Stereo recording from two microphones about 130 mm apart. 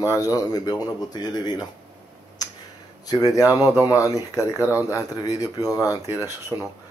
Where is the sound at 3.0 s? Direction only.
30° left (ahead or behind).